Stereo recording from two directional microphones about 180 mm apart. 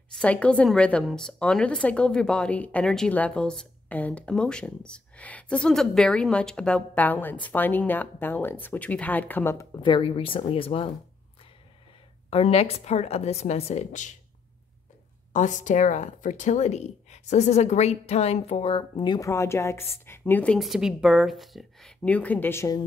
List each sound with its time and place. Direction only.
0.2 s a woman's voice: 5° left (ahead or behind)
9.8 s speech: 25° left (ahead or behind)
12.3 s speech: 35° left (ahead or behind)
15.3 s speech: 45° left (ahead or behind); by 20.5 s 10° left (ahead or behind)
20.5 s a woman's voice: centre (ahead or behind); by 22.8 s 15° left (ahead or behind)